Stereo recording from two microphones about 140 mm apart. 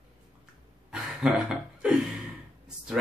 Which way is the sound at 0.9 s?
5° right (ahead or behind).